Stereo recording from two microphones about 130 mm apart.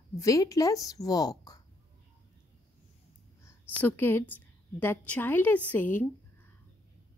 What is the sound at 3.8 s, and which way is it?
A woman's voice, 15° left (ahead or behind).